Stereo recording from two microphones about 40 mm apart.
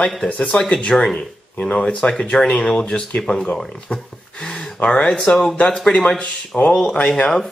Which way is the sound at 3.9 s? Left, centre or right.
Left.